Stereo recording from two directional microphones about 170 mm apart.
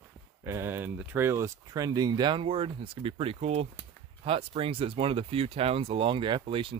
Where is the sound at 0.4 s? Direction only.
15° right (ahead or behind).